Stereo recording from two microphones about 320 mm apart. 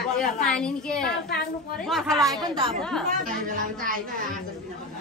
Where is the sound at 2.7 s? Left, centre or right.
Centre.